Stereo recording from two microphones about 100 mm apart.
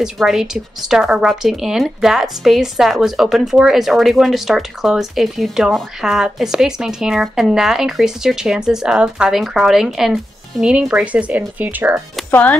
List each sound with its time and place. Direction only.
0.0 s speech: 5° right (ahead or behind)
12.3 s speech: 15° left (ahead or behind)